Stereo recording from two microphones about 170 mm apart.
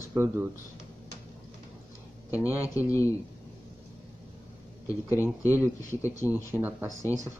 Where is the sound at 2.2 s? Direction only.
15° left (ahead or behind).